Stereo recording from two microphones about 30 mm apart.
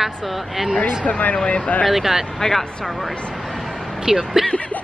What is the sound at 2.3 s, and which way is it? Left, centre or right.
Speech, centre.